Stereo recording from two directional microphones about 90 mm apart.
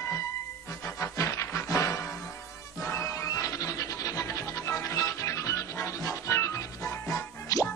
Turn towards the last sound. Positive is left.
turn(degrees=35)  # may be behind; listen again after turning